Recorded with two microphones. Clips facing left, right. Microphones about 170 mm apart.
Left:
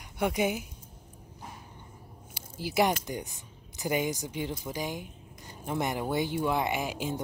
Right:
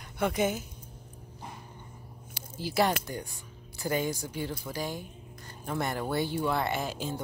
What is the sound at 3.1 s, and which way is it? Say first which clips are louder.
Speech: left 2 dB; 20° left (ahead or behind).